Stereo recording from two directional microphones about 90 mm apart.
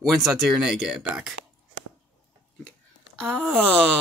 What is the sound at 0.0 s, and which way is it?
Speech, centre (ahead or behind).